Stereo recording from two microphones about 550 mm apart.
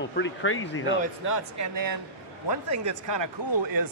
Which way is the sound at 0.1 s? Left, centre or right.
Centre.